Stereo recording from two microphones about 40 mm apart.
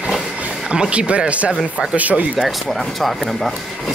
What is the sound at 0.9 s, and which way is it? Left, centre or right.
Speech, right.